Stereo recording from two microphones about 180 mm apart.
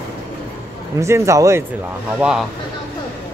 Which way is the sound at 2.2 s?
5° right (ahead or behind).